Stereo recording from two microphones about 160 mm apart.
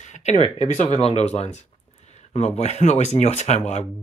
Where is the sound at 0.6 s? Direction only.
40° left (ahead or behind).